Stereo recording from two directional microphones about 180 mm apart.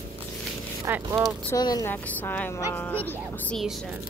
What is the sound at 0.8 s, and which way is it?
Speech, 15° right (ahead or behind).